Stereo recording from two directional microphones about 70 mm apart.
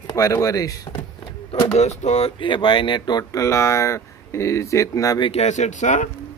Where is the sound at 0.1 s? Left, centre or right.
Left.